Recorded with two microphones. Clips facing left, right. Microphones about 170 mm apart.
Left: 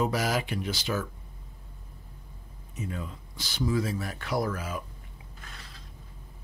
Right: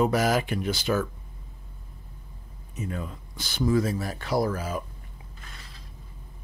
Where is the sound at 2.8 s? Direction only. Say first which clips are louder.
Right 3 dB; 50° right (ahead or behind).